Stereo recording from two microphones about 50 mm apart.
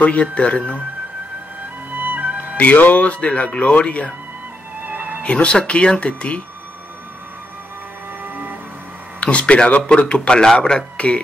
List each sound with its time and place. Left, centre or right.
0.0 s speech: left
1.9 s music: right
2.5 s speech: left
4.8 s music: right
5.2 s speech: left
8.2 s music: right
9.2 s a man's voice: left
11.0 s speech: left